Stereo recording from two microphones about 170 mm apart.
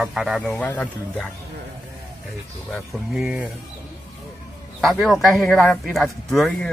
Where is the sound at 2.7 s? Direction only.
Centre (ahead or behind).